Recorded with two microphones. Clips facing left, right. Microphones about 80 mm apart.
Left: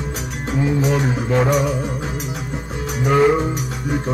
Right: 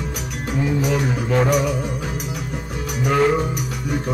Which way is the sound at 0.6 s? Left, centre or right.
Left.